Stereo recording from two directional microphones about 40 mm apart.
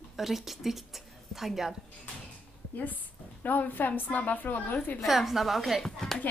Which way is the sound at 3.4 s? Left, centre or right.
Left.